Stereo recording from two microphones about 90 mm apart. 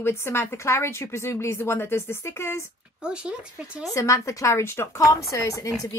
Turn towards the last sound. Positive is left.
turn(degrees=35)  # may be behind; listen again after turning